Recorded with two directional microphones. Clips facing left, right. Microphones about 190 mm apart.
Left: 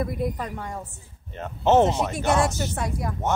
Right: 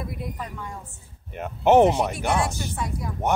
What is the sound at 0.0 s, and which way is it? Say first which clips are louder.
Speech: left 6 dB; 50° left (ahead or behind).